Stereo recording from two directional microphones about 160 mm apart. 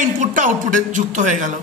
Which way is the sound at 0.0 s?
55° right (ahead or behind).